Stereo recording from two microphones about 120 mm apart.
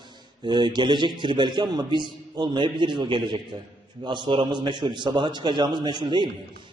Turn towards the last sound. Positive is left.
turn(degrees=-40)  # may be behind; listen again after turning